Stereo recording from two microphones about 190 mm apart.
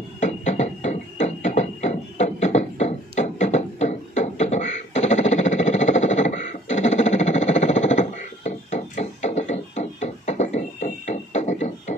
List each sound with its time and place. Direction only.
0.2 s music: 40° left (ahead or behind)